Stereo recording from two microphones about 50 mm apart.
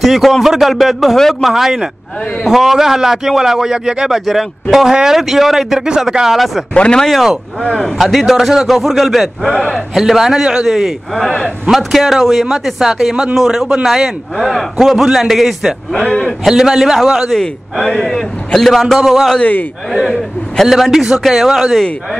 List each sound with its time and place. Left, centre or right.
0.0 s a man's voice: centre
6.7 s speech: left
7.1 s a man's voice: centre
9.9 s a man's voice: centre
14.3 s a man's voice: centre
16.1 s a man's voice: centre
16.4 s speech: centre
17.4 s a man's voice: centre
17.9 s a man's voice: centre
18.9 s a man's voice: centre